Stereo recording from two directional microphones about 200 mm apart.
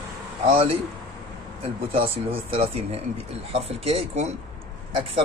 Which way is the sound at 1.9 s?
30° right (ahead or behind).